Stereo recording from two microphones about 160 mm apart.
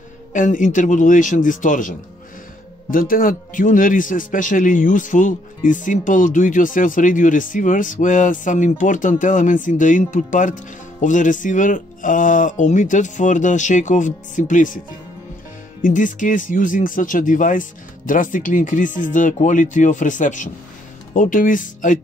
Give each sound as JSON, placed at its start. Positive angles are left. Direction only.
{"t": 0.3, "sound": "a man's voice", "side_deg": 55}
{"t": 15.8, "sound": "speech", "side_deg": 55}